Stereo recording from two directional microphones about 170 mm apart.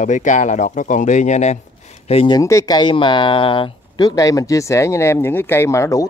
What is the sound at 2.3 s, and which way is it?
Speech, 20° left (ahead or behind).